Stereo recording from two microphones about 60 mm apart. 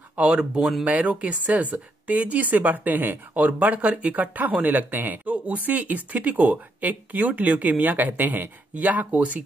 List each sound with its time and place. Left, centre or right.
0.2 s speech: centre